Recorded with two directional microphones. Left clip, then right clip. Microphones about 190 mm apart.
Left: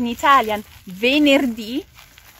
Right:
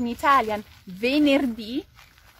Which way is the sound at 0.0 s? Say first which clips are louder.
Left 5 dB; 40° left (ahead or behind).